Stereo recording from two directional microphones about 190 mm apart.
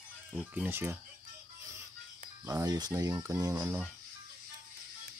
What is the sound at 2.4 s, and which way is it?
Speech, 20° right (ahead or behind).